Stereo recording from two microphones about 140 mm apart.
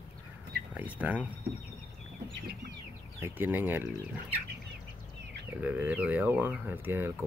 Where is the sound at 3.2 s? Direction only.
15° right (ahead or behind).